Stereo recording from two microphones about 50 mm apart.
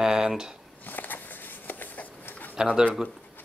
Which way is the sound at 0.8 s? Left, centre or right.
Left.